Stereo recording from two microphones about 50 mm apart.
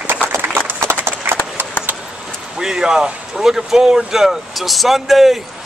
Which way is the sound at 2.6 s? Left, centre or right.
Centre.